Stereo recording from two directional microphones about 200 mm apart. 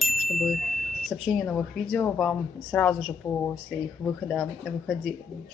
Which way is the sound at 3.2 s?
15° left (ahead or behind).